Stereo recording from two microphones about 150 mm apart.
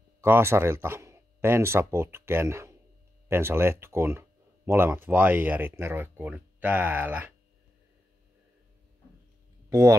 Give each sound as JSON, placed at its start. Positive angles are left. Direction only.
{"t": 0.2, "sound": "speech", "side_deg": -15}
{"t": 9.7, "sound": "speech", "side_deg": -20}